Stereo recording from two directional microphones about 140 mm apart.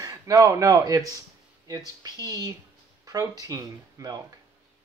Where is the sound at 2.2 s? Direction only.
25° right (ahead or behind).